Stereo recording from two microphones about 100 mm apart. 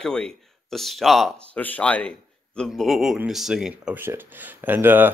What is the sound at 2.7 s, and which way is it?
Speech, centre (ahead or behind).